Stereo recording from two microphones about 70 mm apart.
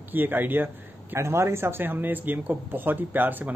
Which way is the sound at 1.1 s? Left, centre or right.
Right.